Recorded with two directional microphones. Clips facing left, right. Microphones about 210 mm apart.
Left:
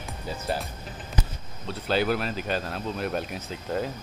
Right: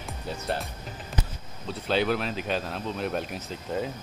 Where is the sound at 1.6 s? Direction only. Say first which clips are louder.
Even; centre (ahead or behind).